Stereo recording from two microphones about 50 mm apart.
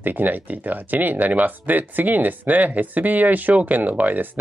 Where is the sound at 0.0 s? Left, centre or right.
Right.